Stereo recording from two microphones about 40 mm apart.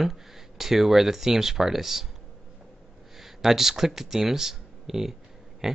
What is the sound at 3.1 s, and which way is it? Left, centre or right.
Speech, centre.